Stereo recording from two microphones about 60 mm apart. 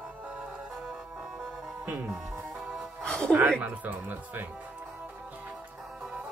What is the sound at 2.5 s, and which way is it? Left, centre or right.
Music, centre.